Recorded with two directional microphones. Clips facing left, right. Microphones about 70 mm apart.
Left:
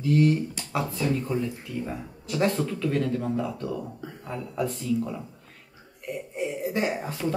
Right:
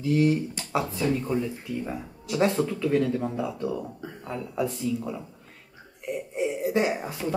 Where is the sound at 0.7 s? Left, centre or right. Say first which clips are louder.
Right 1 dB; centre.